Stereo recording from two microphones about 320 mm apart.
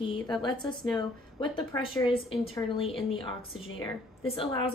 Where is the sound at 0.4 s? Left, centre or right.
Centre.